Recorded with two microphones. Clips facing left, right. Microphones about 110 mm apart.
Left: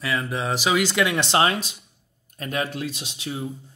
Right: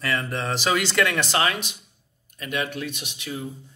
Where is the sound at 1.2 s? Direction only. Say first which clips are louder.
Left 3 dB; 25° left (ahead or behind).